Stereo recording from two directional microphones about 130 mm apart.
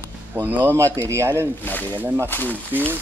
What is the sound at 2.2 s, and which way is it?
Speech, 15° left (ahead or behind).